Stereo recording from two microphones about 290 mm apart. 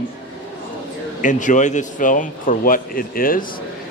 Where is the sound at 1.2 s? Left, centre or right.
Left.